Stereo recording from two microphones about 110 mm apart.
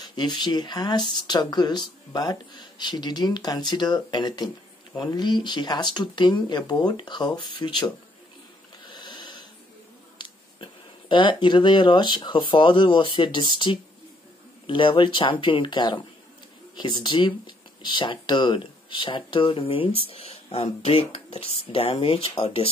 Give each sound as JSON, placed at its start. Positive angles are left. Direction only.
{"t": 0.0, "sound": "speech", "side_deg": 45}
{"t": 8.8, "sound": "snoring", "side_deg": 45}
{"t": 10.1, "sound": "speech", "side_deg": 45}
{"t": 21.7, "sound": "speech", "side_deg": 80}
{"t": 22.0, "sound": "speech", "side_deg": 65}